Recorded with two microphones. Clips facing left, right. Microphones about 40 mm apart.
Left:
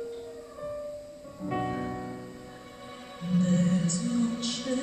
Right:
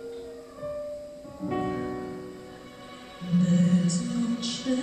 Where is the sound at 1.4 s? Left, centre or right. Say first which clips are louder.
Right 2 dB; centre.